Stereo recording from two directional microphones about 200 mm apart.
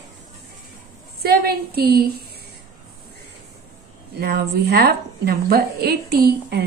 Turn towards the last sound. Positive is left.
turn(degrees=-50)  # may be behind; listen again after turning